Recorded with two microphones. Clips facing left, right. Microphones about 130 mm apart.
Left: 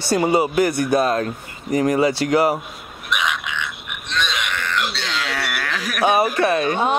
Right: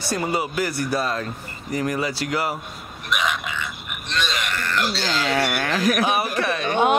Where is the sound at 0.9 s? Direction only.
50° left (ahead or behind).